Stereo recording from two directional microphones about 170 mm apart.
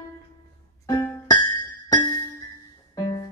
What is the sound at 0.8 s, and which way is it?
Music, 20° left (ahead or behind).